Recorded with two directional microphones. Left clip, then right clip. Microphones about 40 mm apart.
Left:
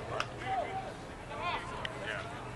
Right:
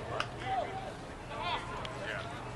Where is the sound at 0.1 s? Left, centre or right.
Centre.